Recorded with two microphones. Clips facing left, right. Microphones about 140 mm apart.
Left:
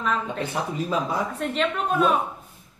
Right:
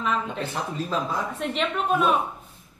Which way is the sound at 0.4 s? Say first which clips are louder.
Left 2 dB; 10° left (ahead or behind).